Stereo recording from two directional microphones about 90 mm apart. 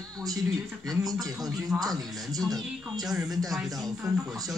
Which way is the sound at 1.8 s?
45° right (ahead or behind).